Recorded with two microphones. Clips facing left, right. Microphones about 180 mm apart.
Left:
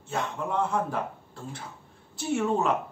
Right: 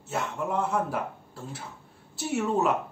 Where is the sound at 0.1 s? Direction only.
5° right (ahead or behind).